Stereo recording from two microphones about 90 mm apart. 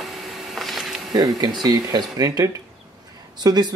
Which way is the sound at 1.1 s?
50° right (ahead or behind).